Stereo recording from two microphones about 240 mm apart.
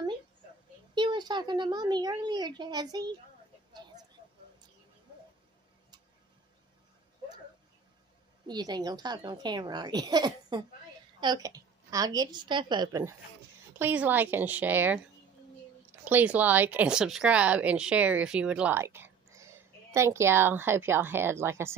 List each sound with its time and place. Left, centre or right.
0.9 s a woman's voice: centre
8.5 s a woman's voice: centre